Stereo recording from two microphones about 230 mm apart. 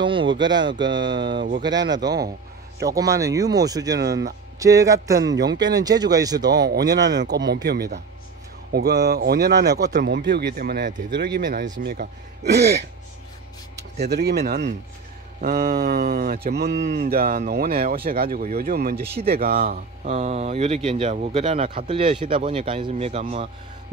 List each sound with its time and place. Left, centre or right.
0.0 s speech: right
1.2 s speech: right
1.6 s speech: centre
4.0 s speech: right
4.6 s speech: centre
5.2 s speech: right
5.6 s speech: centre
6.5 s speech: right
14.0 s speech: right